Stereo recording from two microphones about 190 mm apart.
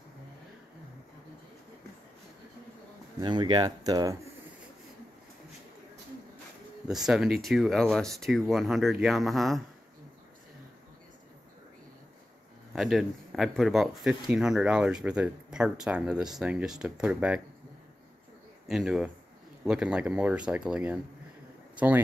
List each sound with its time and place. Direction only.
3.2 s speech: 25° right (ahead or behind)
7.1 s speech: centre (ahead or behind)
12.7 s speech: centre (ahead or behind)
18.7 s speech: 5° right (ahead or behind)